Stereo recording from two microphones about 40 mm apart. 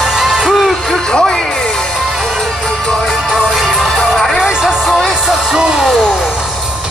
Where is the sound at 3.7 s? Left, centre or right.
Centre.